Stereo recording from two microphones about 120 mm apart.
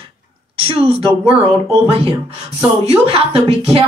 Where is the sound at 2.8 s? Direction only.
55° right (ahead or behind).